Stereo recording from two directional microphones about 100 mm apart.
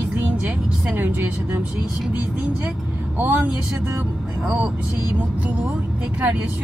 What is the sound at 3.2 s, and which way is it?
Speech, 20° right (ahead or behind).